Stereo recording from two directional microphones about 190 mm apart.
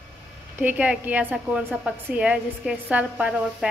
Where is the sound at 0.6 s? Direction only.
10° right (ahead or behind).